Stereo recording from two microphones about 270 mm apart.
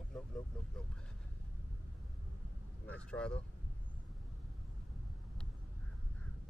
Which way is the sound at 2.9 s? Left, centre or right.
Centre.